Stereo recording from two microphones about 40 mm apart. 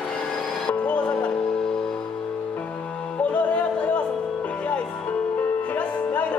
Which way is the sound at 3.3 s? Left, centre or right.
Left.